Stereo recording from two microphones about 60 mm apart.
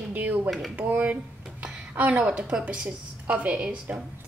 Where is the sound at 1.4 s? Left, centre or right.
Centre.